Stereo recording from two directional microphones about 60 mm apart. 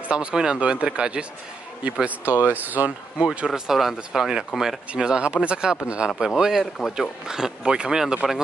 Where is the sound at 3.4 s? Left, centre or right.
Centre.